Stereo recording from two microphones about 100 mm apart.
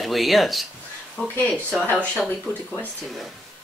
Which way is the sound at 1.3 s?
15° left (ahead or behind).